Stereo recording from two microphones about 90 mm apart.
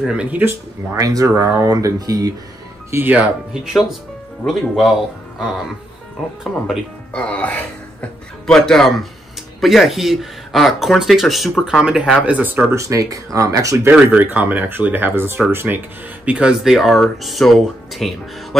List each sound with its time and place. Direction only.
0.0 s speech: 10° right (ahead or behind)
0.9 s speech: 40° right (ahead or behind)
2.9 s speech: 20° right (ahead or behind)
4.5 s speech: centre (ahead or behind)
7.1 s a man's voice: 15° left (ahead or behind); by 12.6 s 20° right (ahead or behind)
12.7 s speech: 35° right (ahead or behind)
13.9 s speech: 15° right (ahead or behind)
16.3 s speech: 10° right (ahead or behind)